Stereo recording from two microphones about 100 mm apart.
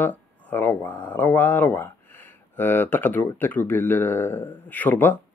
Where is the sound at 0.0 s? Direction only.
20° left (ahead or behind).